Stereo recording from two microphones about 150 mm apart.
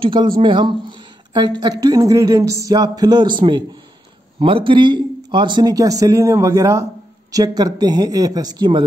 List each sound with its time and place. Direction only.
0.0 s speech: 35° right (ahead or behind)